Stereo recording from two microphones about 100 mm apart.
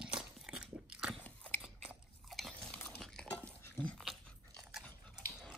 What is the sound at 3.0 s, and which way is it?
Dog, 5° left (ahead or behind).